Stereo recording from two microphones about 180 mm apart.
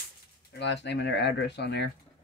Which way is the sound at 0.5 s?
75° left (ahead or behind).